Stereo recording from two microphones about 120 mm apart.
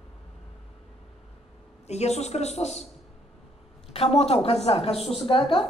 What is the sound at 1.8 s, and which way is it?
A woman's voice, 65° left (ahead or behind).